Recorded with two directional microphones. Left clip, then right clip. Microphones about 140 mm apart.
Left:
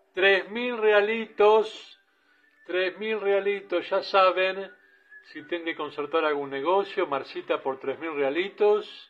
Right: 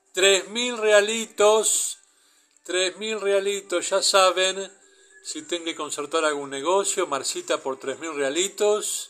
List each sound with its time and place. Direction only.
0.1 s speech: 35° right (ahead or behind)